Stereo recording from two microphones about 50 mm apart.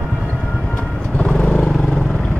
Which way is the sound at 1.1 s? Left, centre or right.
Centre.